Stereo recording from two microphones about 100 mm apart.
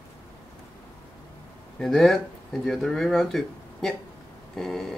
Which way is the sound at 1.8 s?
5° left (ahead or behind).